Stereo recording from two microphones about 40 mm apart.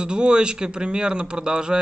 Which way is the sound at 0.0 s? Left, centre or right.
Right.